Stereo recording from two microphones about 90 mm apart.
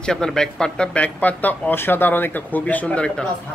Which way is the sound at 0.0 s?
5° left (ahead or behind).